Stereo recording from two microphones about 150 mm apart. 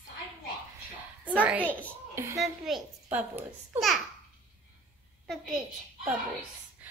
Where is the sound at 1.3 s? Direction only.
10° right (ahead or behind).